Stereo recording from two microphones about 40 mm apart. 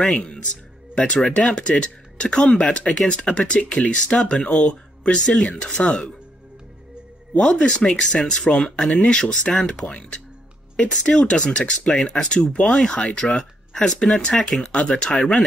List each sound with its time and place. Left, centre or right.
0.1 s speech: centre
5.5 s speech: left
5.9 s speech: centre
7.3 s speech: centre